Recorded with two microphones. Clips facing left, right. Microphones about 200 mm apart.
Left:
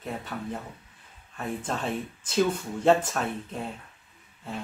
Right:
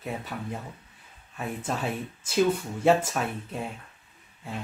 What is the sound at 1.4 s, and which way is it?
Speech, 10° right (ahead or behind).